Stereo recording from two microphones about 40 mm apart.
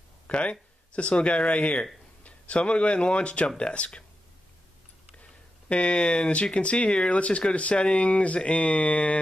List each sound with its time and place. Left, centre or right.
0.3 s speech: left
5.7 s speech: left